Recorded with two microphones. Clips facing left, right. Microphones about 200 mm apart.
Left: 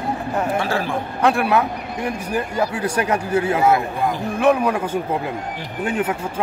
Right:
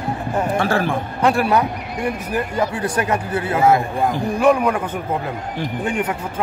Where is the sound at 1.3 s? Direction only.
Centre (ahead or behind).